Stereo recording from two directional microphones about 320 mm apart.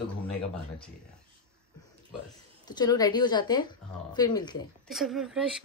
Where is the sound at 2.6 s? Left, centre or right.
Centre.